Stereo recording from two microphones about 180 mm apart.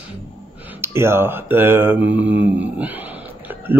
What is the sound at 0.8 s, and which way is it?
Speech, 15° right (ahead or behind).